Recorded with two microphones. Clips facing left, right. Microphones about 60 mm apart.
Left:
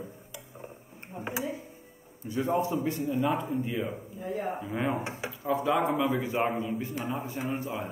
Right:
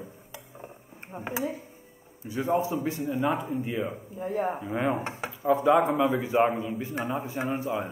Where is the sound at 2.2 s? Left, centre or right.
Centre.